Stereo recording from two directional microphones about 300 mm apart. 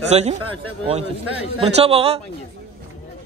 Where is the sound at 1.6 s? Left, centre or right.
Centre.